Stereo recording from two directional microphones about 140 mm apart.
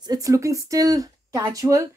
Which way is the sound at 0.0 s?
25° right (ahead or behind).